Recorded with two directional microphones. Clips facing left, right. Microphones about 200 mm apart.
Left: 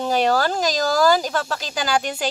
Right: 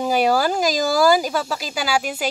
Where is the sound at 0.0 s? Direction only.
10° right (ahead or behind).